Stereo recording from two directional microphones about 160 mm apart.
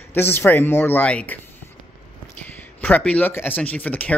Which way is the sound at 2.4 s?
10° left (ahead or behind).